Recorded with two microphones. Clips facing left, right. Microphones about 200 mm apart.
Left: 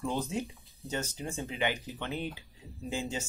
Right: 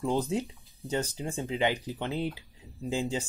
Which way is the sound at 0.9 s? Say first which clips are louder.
Right 4 dB; 20° right (ahead or behind).